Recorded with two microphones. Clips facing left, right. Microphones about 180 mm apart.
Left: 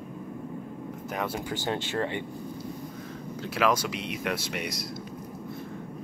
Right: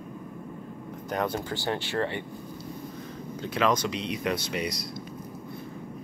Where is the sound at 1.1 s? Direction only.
5° left (ahead or behind).